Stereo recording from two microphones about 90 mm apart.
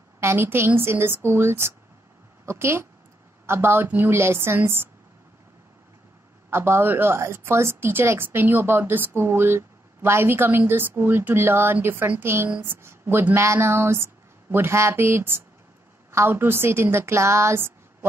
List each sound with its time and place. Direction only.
0.2 s a woman's voice: 25° right (ahead or behind)
6.5 s a woman's voice: 30° right (ahead or behind)